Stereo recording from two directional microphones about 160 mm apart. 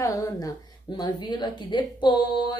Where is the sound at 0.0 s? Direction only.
20° left (ahead or behind).